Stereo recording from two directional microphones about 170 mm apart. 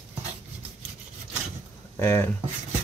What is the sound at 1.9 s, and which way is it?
Speech, 15° left (ahead or behind).